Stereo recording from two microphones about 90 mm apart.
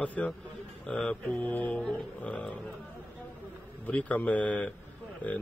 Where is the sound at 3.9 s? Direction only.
15° left (ahead or behind).